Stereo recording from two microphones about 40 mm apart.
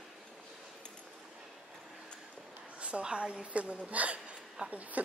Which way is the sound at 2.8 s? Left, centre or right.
Right.